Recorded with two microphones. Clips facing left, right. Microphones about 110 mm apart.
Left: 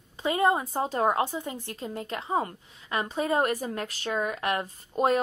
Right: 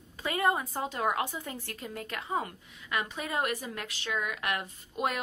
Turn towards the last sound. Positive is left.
turn(degrees=35)  # may be behind; listen again after turning